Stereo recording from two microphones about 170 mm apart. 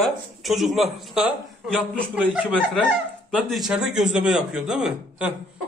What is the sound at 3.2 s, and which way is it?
A man's voice, 5° right (ahead or behind).